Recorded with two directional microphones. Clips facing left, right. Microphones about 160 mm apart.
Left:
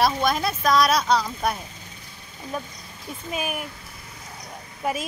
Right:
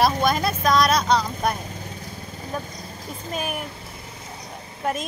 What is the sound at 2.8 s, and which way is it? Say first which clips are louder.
Vehicle: right 2 dB; 40° right (ahead or behind).